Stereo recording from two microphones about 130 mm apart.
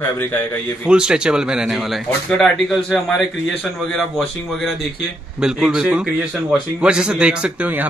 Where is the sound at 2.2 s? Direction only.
10° left (ahead or behind).